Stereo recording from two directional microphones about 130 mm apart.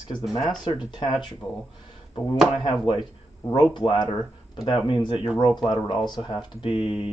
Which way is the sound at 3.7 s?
40° left (ahead or behind).